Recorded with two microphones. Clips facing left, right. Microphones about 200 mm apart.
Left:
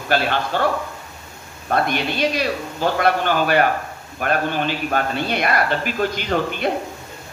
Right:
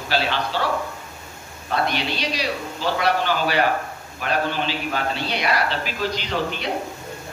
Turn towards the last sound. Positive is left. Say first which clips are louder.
# left 5 dB
turn(degrees=50)  # may be behind; listen again after turning